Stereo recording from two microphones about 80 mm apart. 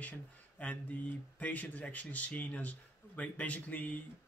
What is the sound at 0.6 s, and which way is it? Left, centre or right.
Speech, centre.